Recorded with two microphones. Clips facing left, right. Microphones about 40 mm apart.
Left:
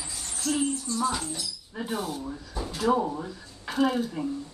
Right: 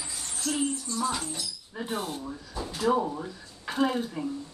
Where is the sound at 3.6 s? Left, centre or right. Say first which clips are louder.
Left 2 dB; centre.